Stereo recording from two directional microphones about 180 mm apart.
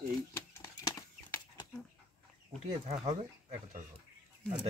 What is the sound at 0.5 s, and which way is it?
Bird flight, 15° left (ahead or behind).